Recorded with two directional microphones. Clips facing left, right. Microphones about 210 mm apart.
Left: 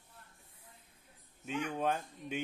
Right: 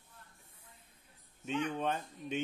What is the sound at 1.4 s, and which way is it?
Speech, 10° left (ahead or behind).